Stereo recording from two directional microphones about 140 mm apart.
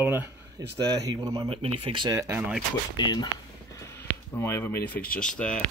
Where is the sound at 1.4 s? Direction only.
45° right (ahead or behind).